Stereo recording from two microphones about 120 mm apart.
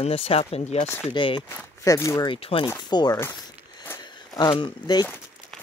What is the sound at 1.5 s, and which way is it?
Speech, 25° left (ahead or behind).